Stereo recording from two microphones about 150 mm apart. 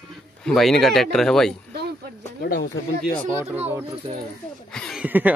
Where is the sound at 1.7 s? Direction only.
90° right.